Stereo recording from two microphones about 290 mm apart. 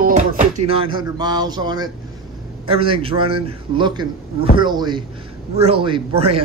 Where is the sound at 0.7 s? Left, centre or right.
Centre.